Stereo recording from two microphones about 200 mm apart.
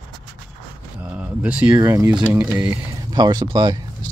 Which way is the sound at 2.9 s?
20° right (ahead or behind).